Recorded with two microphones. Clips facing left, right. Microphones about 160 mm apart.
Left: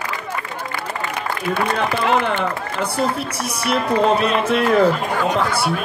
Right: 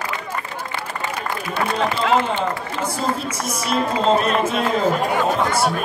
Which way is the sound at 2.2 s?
65° left (ahead or behind).